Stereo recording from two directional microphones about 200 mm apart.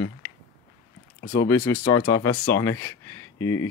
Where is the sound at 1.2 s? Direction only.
55° left (ahead or behind).